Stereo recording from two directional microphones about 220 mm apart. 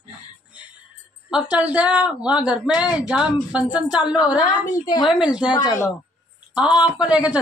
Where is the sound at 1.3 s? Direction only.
5° right (ahead or behind).